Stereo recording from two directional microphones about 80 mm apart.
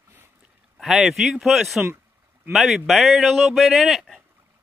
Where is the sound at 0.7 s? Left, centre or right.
Centre.